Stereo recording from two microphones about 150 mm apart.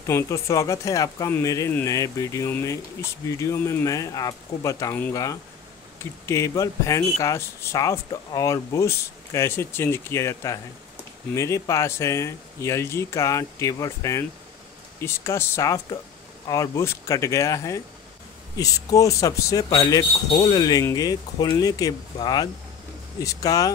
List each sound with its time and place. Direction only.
0.0 s speech: 20° left (ahead or behind)